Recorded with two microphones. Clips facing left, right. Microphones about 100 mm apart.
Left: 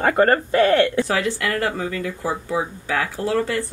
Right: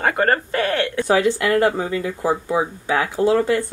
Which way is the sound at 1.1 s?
20° right (ahead or behind).